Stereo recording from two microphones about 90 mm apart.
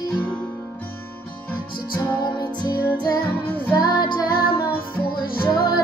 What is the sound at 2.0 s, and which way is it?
Music, 50° left (ahead or behind).